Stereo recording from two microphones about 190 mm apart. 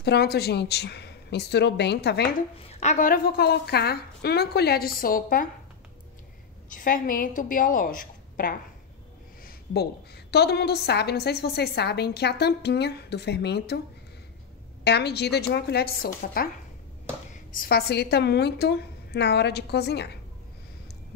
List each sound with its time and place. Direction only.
0.0 s a woman's voice: 60° left (ahead or behind)
2.7 s a woman's voice: 40° left (ahead or behind)
6.7 s a woman's voice: 45° left (ahead or behind)
14.9 s a woman's voice: 60° left (ahead or behind)
17.5 s a woman's voice: 50° left (ahead or behind)